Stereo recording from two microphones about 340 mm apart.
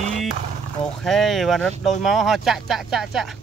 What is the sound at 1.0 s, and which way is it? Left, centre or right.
Speech, centre.